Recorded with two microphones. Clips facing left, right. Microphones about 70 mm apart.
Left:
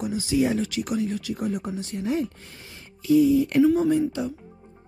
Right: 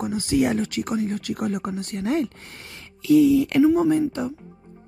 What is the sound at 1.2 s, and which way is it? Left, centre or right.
Speech, right.